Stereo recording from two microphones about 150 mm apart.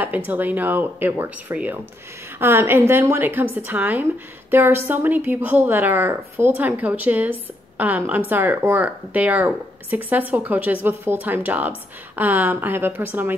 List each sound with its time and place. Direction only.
0.0 s a woman's voice: 10° right (ahead or behind)